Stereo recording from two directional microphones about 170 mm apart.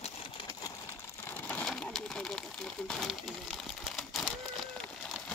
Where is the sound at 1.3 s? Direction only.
10° left (ahead or behind).